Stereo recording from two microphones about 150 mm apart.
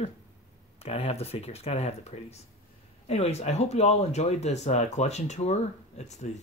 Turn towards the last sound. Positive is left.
turn(degrees=50)  # may be behind; listen again after turning